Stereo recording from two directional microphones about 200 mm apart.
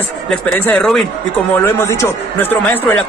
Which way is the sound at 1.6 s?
15° left (ahead or behind).